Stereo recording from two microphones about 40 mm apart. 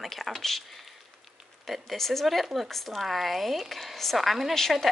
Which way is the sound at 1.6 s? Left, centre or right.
Centre.